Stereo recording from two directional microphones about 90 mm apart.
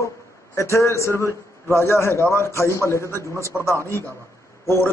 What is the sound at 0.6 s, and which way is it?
A man's voice, 30° left (ahead or behind).